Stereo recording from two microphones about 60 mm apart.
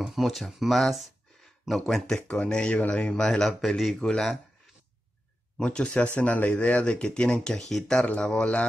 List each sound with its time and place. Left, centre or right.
0.0 s speech: centre
5.6 s speech: centre